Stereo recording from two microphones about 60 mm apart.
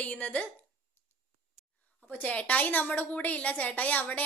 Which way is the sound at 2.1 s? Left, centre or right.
Left.